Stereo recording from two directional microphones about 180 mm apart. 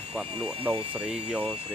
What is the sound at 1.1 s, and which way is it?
Speech, 5° right (ahead or behind).